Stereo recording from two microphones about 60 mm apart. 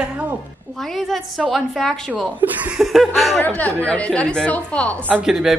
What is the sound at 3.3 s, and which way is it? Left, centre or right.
Speech, left.